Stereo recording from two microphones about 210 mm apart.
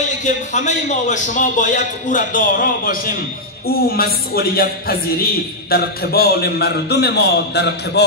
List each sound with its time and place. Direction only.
0.2 s a man's voice: 35° left (ahead or behind); by 8.0 s 55° left (ahead or behind)